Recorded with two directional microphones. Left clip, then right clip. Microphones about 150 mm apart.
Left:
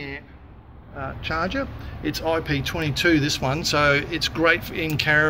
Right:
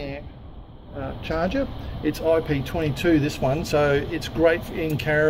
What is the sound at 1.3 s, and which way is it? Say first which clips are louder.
Speech: right 1 dB; 90° right.